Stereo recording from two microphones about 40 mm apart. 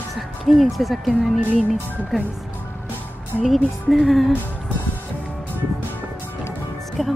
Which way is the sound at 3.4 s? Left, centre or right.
Centre.